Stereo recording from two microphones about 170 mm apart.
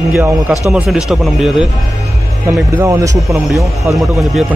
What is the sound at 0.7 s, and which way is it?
Speech, 5° right (ahead or behind).